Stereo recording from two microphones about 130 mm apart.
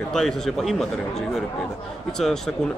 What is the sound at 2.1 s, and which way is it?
Speech, 5° left (ahead or behind).